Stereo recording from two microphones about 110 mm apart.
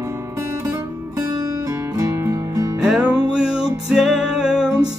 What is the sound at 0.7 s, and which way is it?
Music, 30° right (ahead or behind).